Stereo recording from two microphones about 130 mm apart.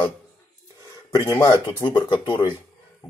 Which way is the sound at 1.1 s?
25° left (ahead or behind).